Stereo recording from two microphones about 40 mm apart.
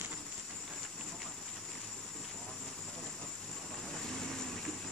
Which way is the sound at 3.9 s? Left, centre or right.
Centre.